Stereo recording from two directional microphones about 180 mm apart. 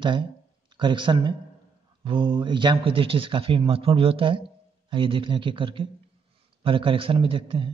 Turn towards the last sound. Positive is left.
turn(degrees=-30)  # may be behind; listen again after turning